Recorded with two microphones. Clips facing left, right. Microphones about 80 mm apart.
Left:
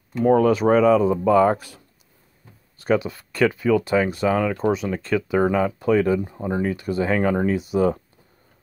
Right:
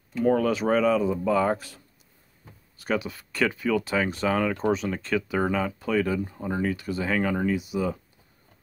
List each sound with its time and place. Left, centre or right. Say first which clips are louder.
0.2 s speech: left 6 dB; left
3.0 s speech: left 6 dB; left
3.9 s speech: left 5 dB; centre